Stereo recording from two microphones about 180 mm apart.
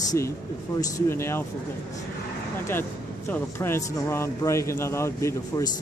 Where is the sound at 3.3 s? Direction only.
15° left (ahead or behind).